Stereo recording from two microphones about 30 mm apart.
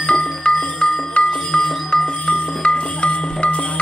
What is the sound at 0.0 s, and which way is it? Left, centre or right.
Music, left.